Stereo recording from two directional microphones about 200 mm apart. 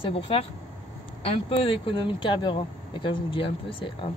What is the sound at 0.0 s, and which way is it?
Speech, 30° left (ahead or behind).